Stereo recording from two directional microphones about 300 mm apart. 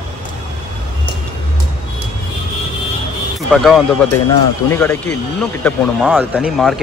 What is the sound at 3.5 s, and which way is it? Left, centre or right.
Speech, centre.